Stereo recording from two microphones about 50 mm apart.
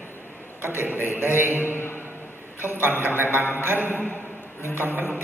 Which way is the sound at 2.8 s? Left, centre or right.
Right.